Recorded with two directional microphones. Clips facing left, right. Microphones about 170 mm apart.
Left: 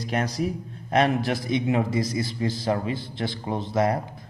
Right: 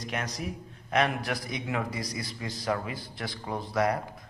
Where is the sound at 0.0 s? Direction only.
30° left (ahead or behind).